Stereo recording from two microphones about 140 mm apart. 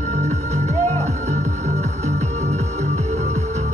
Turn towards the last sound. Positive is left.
turn(degrees=-50)  # may be behind; listen again after turning